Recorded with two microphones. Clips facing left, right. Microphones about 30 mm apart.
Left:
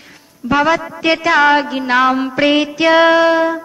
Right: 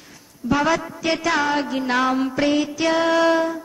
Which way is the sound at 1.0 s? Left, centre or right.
Left.